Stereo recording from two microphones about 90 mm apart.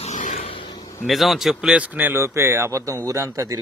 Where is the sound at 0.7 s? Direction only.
50° left (ahead or behind).